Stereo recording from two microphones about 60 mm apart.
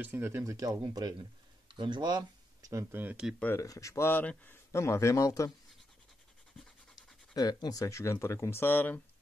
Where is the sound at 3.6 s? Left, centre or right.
Left.